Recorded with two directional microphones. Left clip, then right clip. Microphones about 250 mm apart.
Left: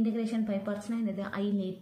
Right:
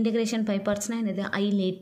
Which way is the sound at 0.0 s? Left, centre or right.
Right.